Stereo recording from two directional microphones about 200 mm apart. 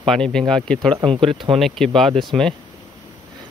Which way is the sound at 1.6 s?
Centre (ahead or behind).